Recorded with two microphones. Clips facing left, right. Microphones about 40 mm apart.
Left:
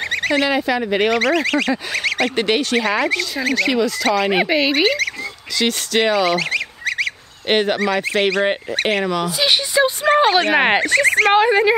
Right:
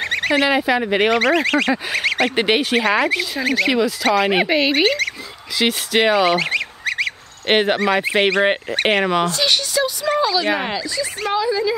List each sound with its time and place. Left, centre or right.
0.1 s speech: centre
5.6 s goose: centre
7.4 s speech: centre
9.2 s speech: centre
9.8 s speech: left